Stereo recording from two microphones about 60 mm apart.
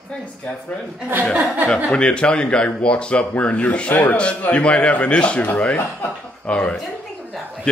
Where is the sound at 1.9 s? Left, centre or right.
Centre.